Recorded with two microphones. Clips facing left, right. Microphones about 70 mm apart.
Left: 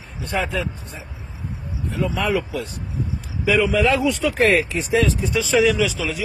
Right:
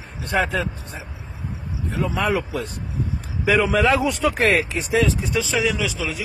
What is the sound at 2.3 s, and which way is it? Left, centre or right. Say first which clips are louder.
Speech: left 1 dB; right.